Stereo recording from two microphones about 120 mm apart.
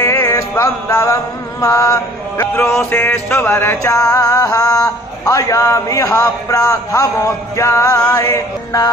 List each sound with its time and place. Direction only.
0.0 s music: 20° left (ahead or behind)